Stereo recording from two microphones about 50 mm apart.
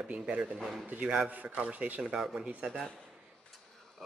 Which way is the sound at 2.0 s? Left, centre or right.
Centre.